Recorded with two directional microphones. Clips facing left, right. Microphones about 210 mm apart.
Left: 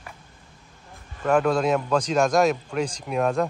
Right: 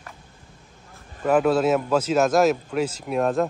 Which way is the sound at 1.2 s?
5° right (ahead or behind).